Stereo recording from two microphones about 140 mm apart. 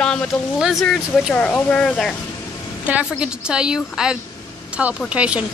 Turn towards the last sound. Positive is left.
turn(degrees=-10)  # may be behind; listen again after turning